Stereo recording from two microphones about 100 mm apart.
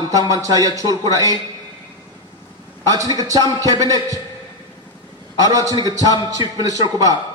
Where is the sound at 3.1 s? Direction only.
35° right (ahead or behind).